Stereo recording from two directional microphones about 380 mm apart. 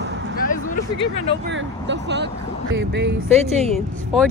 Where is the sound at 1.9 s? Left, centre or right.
Right.